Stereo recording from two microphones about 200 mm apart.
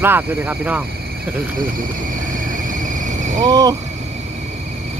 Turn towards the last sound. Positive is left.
turn(degrees=-20)  # may be behind; listen again after turning